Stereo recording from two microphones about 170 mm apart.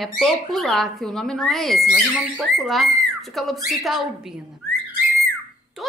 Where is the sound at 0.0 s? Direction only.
Centre (ahead or behind).